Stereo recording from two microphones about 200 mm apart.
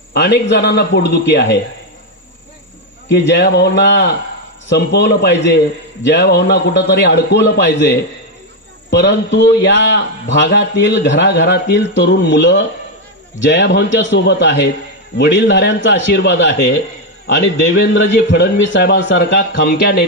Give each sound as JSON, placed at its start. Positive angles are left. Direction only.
{"t": 0.1, "sound": "a man's voice", "side_deg": 55}
{"t": 3.1, "sound": "a man's voice", "side_deg": 60}